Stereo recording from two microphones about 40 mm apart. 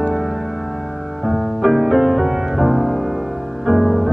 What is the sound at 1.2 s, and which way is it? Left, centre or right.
Music, centre.